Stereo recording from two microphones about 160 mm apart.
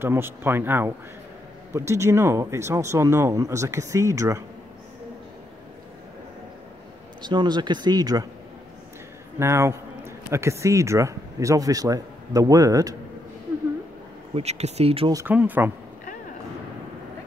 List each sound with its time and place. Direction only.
0.0 s speech: 15° right (ahead or behind)
7.2 s speech: 30° right (ahead or behind)
9.4 s a man's voice: 15° right (ahead or behind)
14.3 s speech: 40° right (ahead or behind)
15.2 s speech: 10° right (ahead or behind)